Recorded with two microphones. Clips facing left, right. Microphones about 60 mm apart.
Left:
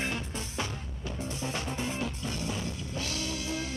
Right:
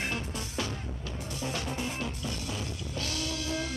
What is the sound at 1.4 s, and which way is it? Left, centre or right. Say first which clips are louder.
Music: right 1 dB; left.